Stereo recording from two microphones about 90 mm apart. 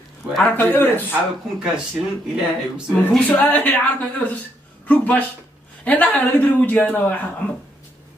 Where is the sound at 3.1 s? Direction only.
10° left (ahead or behind).